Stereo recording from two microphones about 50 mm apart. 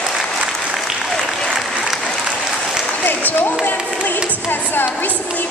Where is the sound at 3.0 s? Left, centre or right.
Left.